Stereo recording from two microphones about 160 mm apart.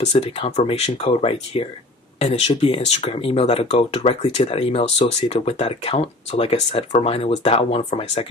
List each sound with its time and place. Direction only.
0.0 s speech: 40° left (ahead or behind)